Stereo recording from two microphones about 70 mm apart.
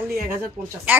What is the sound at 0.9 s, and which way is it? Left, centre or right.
Speech, right.